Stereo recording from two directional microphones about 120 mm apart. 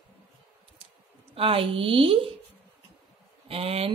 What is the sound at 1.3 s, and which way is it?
Speech, 50° right (ahead or behind).